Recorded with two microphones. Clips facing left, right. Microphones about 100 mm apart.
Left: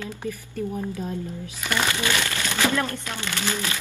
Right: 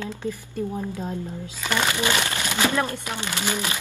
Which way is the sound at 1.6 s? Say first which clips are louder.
Right 1 dB; 20° right (ahead or behind).